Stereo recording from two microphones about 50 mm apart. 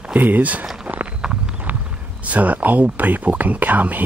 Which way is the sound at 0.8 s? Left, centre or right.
Right.